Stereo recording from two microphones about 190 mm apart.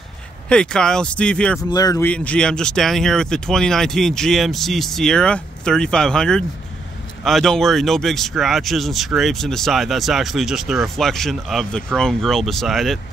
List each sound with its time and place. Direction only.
0.5 s speech: 5° left (ahead or behind)
1.6 s speech: 20° left (ahead or behind)
2.0 s speech: 5° left (ahead or behind)